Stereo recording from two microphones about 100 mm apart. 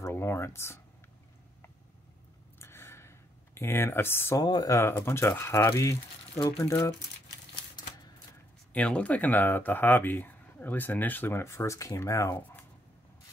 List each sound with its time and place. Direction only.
0.0 s speech: 25° left (ahead or behind)
2.6 s a sound: 25° left (ahead or behind)
4.4 s speech: 40° left (ahead or behind)
8.7 s speech: 10° left (ahead or behind); by 12.4 s 30° left (ahead or behind)